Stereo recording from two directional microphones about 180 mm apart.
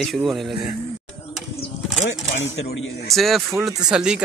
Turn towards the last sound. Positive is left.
turn(degrees=-5)  # may be behind; listen again after turning